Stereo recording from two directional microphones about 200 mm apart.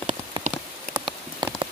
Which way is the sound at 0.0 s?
35° right (ahead or behind).